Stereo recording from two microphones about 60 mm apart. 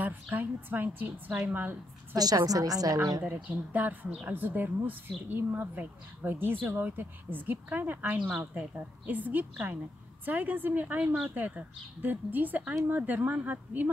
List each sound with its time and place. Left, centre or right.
0.0 s a woman's voice: right
2.1 s a woman's voice: right
3.4 s a woman's voice: right
8.3 s a woman's voice: centre
8.7 s a woman's voice: right